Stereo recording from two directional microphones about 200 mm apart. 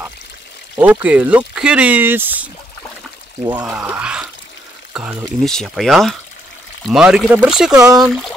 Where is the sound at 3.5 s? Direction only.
5° right (ahead or behind).